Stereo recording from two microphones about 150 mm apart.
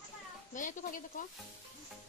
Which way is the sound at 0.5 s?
60° left (ahead or behind).